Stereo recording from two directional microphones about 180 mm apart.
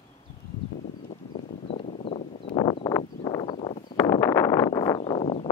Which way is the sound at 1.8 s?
30° left (ahead or behind).